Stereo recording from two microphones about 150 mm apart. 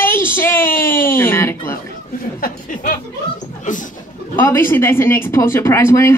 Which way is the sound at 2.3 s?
65° left (ahead or behind).